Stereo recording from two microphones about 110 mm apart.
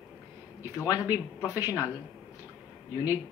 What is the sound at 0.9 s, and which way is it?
Speech, 15° right (ahead or behind).